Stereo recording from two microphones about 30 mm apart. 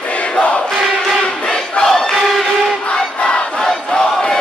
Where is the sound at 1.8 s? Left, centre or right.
Centre.